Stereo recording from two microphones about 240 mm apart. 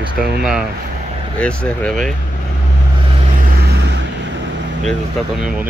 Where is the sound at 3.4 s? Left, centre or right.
Right.